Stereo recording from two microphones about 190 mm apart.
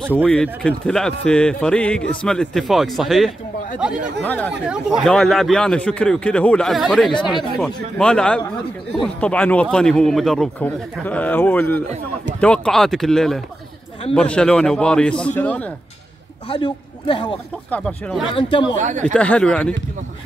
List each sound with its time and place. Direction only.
0.0 s a man's voice: 5° left (ahead or behind)
4.6 s a man's voice: 5° right (ahead or behind)
7.1 s a man's voice: 25° left (ahead or behind)
7.5 s a man's voice: 5° left (ahead or behind)
16.4 s a man's voice: 25° left (ahead or behind)
17.6 s a man's voice: 5° left (ahead or behind)
18.3 s a man's voice: 25° left (ahead or behind)
18.8 s speech: 40° right (ahead or behind)
19.1 s a man's voice: 5° left (ahead or behind)